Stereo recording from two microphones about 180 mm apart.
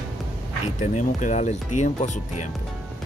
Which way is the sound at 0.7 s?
40° left (ahead or behind).